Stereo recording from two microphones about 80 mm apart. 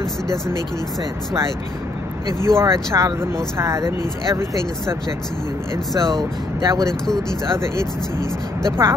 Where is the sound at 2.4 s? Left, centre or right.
Right.